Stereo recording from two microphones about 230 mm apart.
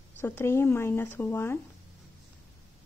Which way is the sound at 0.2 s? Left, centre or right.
Centre.